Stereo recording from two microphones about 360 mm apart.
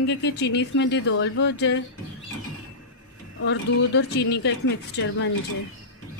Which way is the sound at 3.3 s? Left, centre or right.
Left.